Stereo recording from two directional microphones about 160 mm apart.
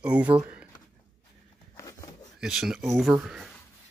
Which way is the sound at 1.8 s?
20° left (ahead or behind).